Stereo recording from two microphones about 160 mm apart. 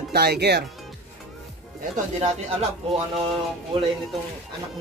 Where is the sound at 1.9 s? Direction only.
45° right (ahead or behind).